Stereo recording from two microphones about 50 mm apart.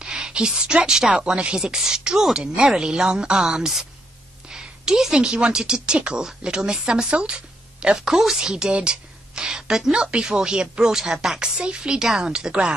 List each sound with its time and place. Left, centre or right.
0.0 s a woman's voice: centre
4.5 s a sound: centre
5.2 s a woman's voice: centre